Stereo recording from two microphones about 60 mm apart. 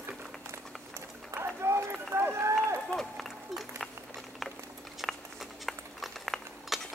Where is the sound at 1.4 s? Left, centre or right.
Right.